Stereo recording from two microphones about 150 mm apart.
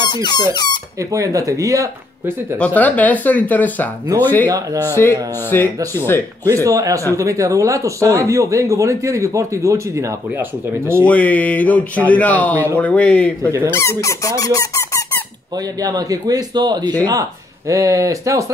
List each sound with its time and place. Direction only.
0.0 s speech: 30° left (ahead or behind)
1.1 s speech: 20° right (ahead or behind)
2.6 s speech: 10° left (ahead or behind)
5.5 s speech: 15° left (ahead or behind)
6.4 s speech: 20° right (ahead or behind)
11.1 s speech: 10° left (ahead or behind)
13.5 s speech: 15° right (ahead or behind)
13.7 s speech: 20° left (ahead or behind)
15.8 s speech: 25° right (ahead or behind)